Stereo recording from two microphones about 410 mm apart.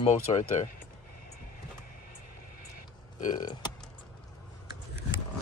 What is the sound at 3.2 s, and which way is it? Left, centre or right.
Speech, centre.